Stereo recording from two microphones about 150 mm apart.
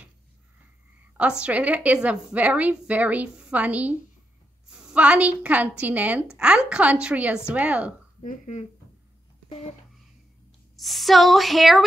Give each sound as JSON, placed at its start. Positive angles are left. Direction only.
{"t": 1.4, "sound": "a woman's voice", "side_deg": -10}
{"t": 8.2, "sound": "speech", "side_deg": 55}
{"t": 10.8, "sound": "a woman's voice", "side_deg": 0}